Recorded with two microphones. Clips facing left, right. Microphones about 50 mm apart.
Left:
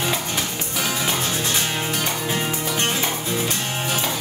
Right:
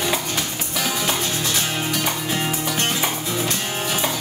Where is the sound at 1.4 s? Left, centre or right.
Centre.